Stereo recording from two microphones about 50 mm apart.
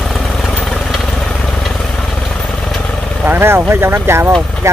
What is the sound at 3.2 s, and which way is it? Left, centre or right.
Vehicle, right.